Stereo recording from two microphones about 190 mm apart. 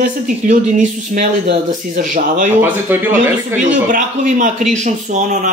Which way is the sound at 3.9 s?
45° right (ahead or behind).